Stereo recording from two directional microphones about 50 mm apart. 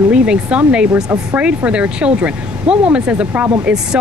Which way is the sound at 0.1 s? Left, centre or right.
Right.